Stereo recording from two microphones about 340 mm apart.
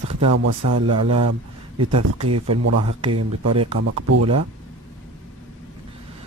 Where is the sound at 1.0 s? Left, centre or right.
Right.